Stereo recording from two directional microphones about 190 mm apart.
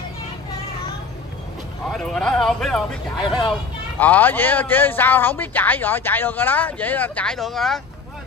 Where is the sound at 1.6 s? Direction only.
Centre (ahead or behind).